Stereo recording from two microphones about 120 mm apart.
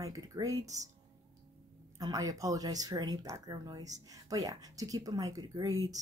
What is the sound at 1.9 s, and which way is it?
Speech, 30° right (ahead or behind).